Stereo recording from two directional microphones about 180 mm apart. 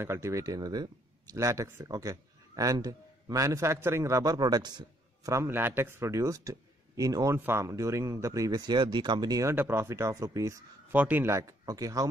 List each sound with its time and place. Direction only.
0.0 s speech: 15° right (ahead or behind)